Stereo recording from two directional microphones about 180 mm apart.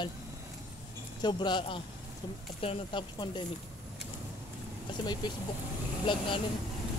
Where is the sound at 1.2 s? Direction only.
25° left (ahead or behind).